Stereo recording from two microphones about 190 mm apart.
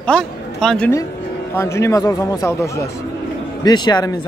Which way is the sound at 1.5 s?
15° left (ahead or behind).